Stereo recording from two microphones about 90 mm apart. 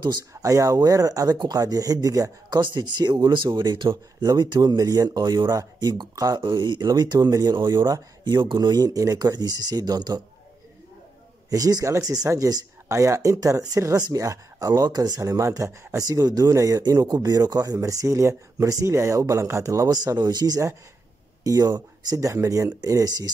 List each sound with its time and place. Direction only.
0.3 s speech: 35° right (ahead or behind)
2.6 s speech: 50° right (ahead or behind)
7.5 s speech: 50° right (ahead or behind)
8.2 s speech: 60° right (ahead or behind)
8.5 s speech: 45° right (ahead or behind)
11.5 s speech: 45° right (ahead or behind)